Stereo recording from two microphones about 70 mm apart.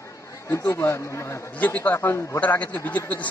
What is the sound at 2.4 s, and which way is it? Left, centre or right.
Speech, left.